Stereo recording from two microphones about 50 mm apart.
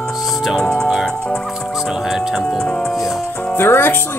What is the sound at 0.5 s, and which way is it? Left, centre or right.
Speech, centre.